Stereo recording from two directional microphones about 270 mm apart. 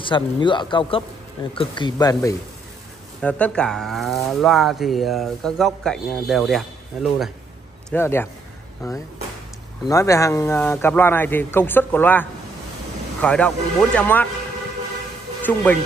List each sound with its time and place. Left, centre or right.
0.0 s speech: centre
9.8 s speech: centre
15.4 s speech: centre